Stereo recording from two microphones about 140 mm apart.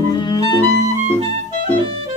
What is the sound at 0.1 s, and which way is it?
Clarinet, 30° left (ahead or behind).